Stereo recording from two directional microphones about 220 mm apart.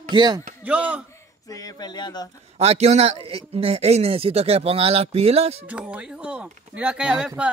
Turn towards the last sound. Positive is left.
turn(degrees=-5)  # may be behind; listen again after turning